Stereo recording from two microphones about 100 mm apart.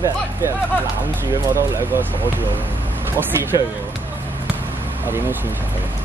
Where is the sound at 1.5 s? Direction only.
30° right (ahead or behind).